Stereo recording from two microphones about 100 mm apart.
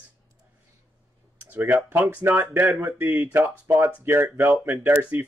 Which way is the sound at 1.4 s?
20° right (ahead or behind).